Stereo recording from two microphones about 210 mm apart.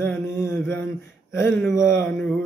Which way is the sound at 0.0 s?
10° left (ahead or behind).